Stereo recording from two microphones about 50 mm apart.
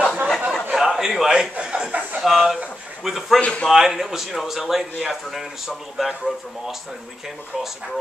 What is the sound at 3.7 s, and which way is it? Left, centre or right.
A man's voice, centre.